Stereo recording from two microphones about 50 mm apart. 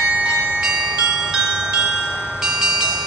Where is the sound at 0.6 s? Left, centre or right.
Centre.